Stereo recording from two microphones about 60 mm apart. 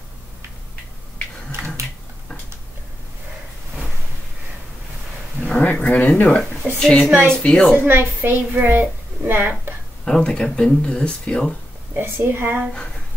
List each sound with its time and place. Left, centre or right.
1.6 s finger snapping: right
5.5 s speech: left
7.7 s a woman's voice: right
10.0 s speech: centre
12.0 s a woman's voice: right